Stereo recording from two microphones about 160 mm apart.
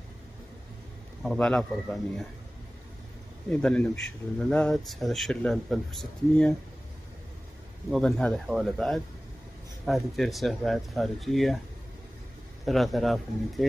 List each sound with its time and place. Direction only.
1.2 s speech: centre (ahead or behind)
3.4 s speech: 5° left (ahead or behind)
7.9 s speech: centre (ahead or behind)
12.6 s speech: centre (ahead or behind)